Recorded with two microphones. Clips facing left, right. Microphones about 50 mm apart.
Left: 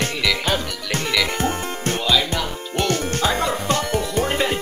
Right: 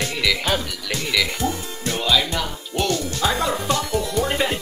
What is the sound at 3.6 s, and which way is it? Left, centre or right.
Music, left.